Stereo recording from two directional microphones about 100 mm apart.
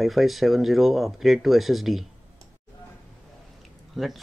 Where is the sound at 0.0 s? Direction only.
Centre (ahead or behind).